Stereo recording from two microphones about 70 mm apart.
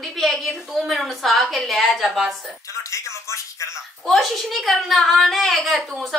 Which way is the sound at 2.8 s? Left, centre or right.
Left.